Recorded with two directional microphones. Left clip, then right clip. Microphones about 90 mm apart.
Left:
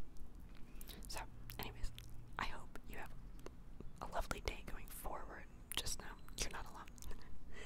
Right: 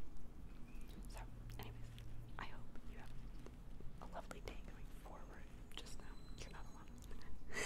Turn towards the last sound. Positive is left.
turn(degrees=-35)  # may be behind; listen again after turning